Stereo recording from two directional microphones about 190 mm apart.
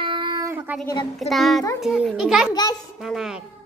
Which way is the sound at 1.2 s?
Centre (ahead or behind).